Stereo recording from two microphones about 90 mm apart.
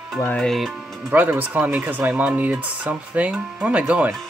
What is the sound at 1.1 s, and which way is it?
Speech, 20° right (ahead or behind).